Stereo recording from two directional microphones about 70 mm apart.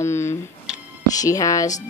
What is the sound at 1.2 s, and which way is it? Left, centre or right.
Speech, left.